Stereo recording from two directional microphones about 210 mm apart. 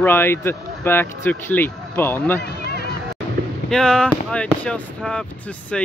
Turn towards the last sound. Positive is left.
turn(degrees=5)  # may be behind; listen again after turning